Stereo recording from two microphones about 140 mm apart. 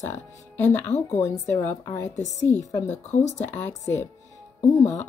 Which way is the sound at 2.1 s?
55° left (ahead or behind).